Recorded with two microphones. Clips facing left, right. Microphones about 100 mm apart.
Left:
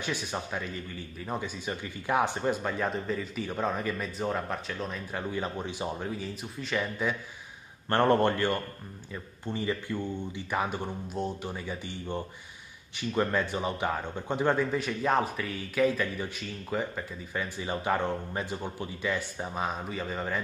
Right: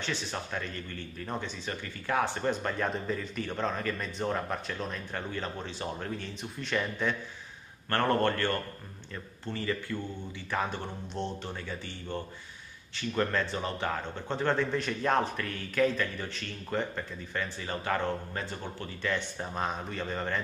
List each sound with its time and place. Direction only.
0.0 s a man's voice: 10° left (ahead or behind)
7.9 s a man's voice: 20° left (ahead or behind); by 20.3 s 5° left (ahead or behind)